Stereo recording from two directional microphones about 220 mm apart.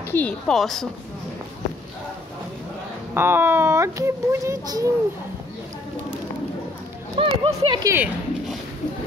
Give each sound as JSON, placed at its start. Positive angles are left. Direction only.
{"t": 0.1, "sound": "speech", "side_deg": 5}
{"t": 3.2, "sound": "a child's voice", "side_deg": -10}
{"t": 7.2, "sound": "speech", "side_deg": -25}
{"t": 7.9, "sound": "a sound", "side_deg": -5}